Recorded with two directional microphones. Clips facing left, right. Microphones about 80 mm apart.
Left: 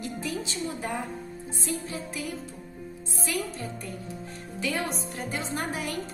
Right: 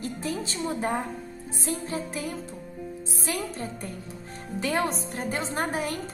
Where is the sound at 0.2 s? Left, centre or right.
Right.